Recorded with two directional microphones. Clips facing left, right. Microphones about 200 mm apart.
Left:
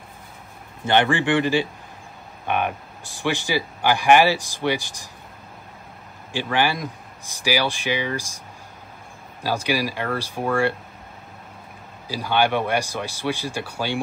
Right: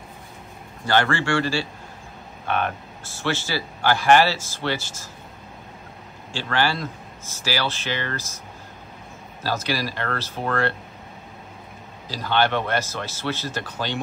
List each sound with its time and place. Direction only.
0.8 s speech: 15° left (ahead or behind)
6.3 s speech: 15° left (ahead or behind)
9.4 s speech: 15° left (ahead or behind)
12.1 s speech: 10° left (ahead or behind)